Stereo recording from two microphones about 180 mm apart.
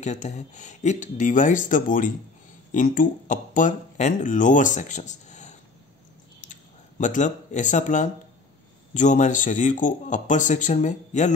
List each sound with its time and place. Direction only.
0.0 s speech: 40° left (ahead or behind)
6.4 s a sound: 45° left (ahead or behind)
8.9 s speech: 40° left (ahead or behind)